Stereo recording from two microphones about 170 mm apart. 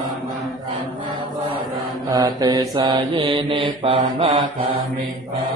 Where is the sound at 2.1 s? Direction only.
20° right (ahead or behind).